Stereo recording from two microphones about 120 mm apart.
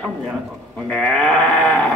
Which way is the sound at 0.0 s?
5° left (ahead or behind).